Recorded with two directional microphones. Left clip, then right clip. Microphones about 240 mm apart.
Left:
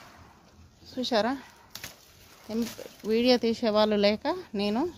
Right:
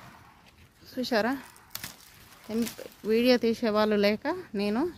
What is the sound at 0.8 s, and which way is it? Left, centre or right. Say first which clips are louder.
Speech: left 1 dB; centre.